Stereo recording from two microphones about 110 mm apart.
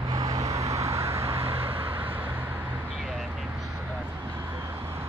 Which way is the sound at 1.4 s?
60° right (ahead or behind).